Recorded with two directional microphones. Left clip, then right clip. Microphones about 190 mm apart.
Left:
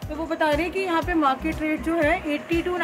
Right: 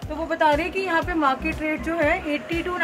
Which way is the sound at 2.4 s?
Centre (ahead or behind).